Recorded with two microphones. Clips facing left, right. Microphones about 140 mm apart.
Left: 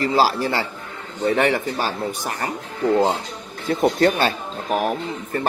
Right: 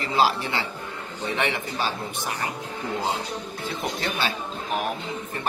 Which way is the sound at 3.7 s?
45° left (ahead or behind).